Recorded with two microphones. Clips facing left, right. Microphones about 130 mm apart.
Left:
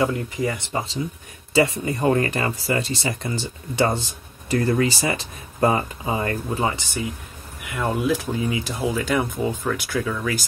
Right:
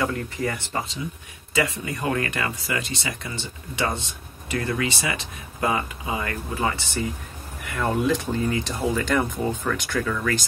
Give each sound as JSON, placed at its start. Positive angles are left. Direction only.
{"t": 0.0, "sound": "speech", "side_deg": 15}
{"t": 1.5, "sound": "speech", "side_deg": 30}
{"t": 6.6, "sound": "speech", "side_deg": 15}